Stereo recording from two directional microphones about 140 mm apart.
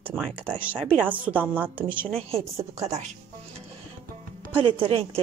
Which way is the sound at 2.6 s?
20° right (ahead or behind).